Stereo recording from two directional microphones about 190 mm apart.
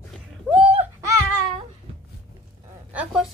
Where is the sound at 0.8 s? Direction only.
15° right (ahead or behind).